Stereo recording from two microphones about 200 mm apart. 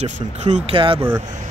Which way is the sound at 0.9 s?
15° right (ahead or behind).